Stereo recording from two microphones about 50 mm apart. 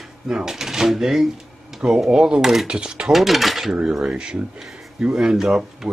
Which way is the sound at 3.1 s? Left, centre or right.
Centre.